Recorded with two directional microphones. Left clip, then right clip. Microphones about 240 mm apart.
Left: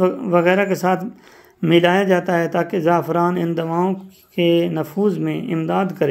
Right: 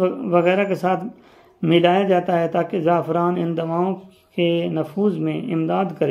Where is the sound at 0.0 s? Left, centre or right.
Left.